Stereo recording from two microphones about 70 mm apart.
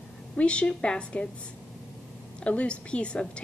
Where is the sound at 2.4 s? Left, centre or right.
Centre.